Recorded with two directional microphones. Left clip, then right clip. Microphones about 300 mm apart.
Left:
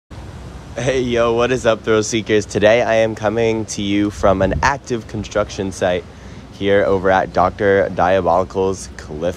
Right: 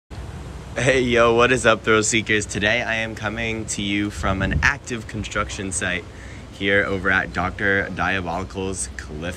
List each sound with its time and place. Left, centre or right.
0.7 s speech: centre